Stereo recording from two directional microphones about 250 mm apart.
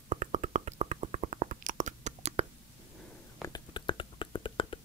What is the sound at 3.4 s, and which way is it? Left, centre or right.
Whispering, centre.